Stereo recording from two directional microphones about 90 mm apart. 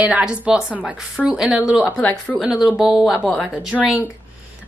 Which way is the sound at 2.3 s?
10° right (ahead or behind).